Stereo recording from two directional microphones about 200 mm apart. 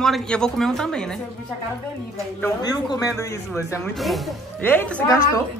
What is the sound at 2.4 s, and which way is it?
A man's voice, 20° left (ahead or behind).